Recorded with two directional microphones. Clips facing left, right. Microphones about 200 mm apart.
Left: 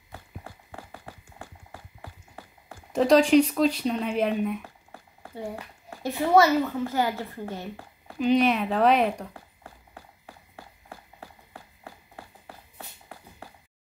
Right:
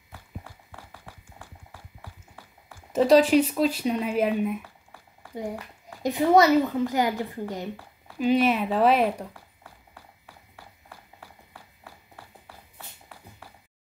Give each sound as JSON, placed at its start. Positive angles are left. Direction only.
{"t": 0.1, "sound": "clip-clop", "side_deg": 40}
{"t": 2.9, "sound": "speech", "side_deg": -5}
{"t": 6.0, "sound": "a woman's voice", "side_deg": -15}
{"t": 8.2, "sound": "speech", "side_deg": -5}
{"t": 9.3, "sound": "a sound", "side_deg": 45}